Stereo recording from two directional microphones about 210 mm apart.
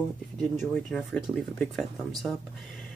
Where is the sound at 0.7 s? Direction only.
Centre (ahead or behind).